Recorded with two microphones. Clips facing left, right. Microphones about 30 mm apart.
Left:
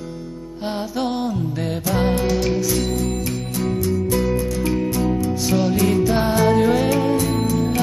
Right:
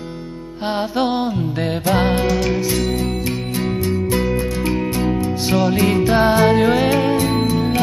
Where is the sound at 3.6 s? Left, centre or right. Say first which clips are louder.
Even; right.